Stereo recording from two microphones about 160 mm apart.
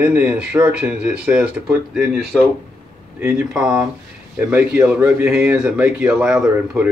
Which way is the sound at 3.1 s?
15° right (ahead or behind).